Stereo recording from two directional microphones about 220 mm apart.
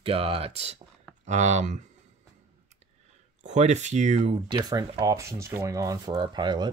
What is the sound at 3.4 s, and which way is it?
Speech, 30° right (ahead or behind).